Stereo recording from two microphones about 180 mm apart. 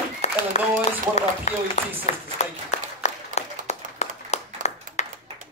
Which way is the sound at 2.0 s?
40° left (ahead or behind).